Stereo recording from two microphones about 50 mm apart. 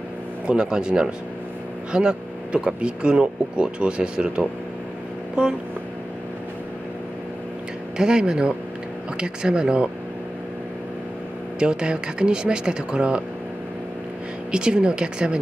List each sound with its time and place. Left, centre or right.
0.5 s speech: centre
8.0 s speech: centre
11.6 s speech: centre
14.5 s speech: centre